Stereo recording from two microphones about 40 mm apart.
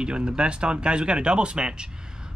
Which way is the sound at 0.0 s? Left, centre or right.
Right.